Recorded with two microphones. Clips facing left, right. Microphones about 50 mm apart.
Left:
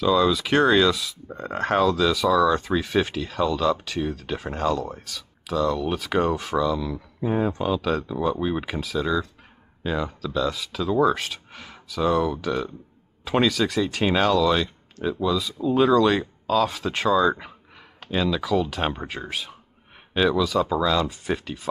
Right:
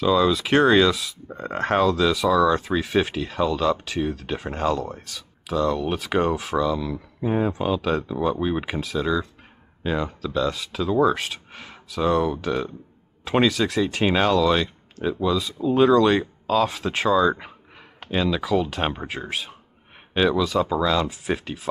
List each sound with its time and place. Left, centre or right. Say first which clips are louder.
0.0 s speech: right 1 dB; centre